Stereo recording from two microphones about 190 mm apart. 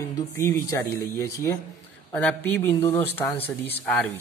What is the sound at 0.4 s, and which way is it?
Speech, 15° left (ahead or behind).